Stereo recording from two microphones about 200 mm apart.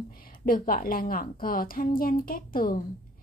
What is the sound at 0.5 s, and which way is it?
A woman's voice, 45° left (ahead or behind).